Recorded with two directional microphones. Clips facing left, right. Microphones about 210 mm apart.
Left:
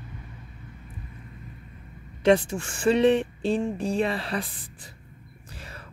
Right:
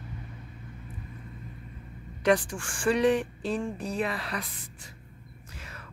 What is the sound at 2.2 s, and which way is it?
Speech, 25° left (ahead or behind).